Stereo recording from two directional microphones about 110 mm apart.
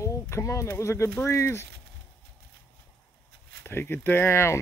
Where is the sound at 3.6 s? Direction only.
20° left (ahead or behind).